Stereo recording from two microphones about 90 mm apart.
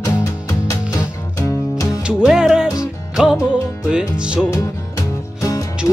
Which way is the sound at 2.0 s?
10° right (ahead or behind).